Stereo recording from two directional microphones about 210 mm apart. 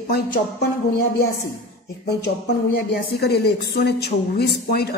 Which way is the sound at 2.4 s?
50° left (ahead or behind).